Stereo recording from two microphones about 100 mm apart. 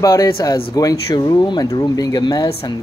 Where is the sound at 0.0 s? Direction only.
35° left (ahead or behind).